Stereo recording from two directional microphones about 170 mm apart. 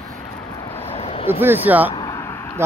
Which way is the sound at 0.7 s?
35° left (ahead or behind).